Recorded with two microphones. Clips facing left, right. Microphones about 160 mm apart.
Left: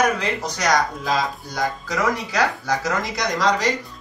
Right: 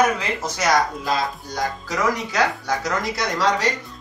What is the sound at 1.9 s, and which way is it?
A man's voice, centre (ahead or behind).